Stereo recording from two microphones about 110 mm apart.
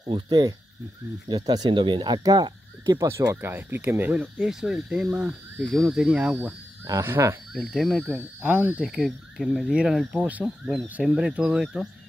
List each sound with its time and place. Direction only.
0.1 s speech: 40° right (ahead or behind)
2.8 s speech: 30° right (ahead or behind); by 6.5 s 15° right (ahead or behind)
6.9 s speech: 25° right (ahead or behind)
7.5 s speech: 5° right (ahead or behind)